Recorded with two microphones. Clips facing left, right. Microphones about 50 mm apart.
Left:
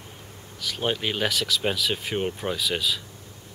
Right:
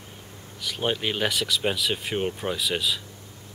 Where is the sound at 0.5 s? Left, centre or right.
Centre.